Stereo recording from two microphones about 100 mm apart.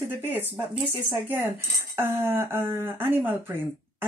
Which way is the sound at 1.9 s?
25° right (ahead or behind).